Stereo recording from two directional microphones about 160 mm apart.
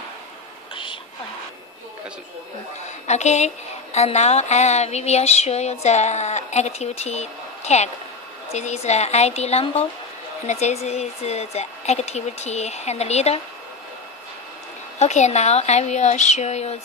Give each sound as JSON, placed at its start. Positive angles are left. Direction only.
{"t": 3.1, "sound": "a woman's voice", "side_deg": 45}
{"t": 15.0, "sound": "a woman's voice", "side_deg": 45}